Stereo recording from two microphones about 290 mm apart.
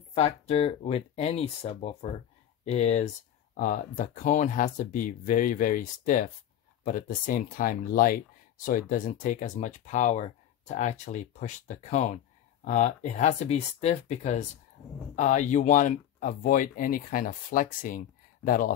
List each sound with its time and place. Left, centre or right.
0.1 s speech: centre